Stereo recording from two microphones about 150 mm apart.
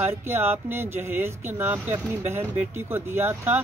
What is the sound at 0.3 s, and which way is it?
Speech, 15° right (ahead or behind).